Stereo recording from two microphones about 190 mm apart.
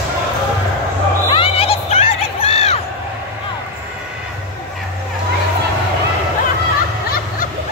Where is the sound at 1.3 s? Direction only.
30° left (ahead or behind).